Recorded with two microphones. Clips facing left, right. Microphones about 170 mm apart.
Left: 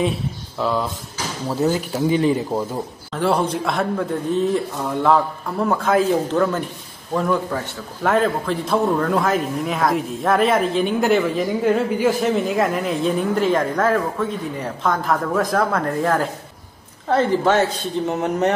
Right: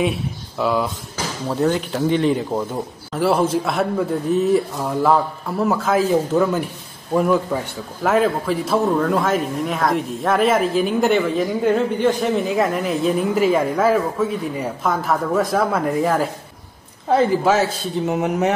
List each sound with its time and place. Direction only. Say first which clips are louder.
0.6 s a man's voice: right 2 dB; centre (ahead or behind)
3.1 s a man's voice: right 2 dB; 5° right (ahead or behind)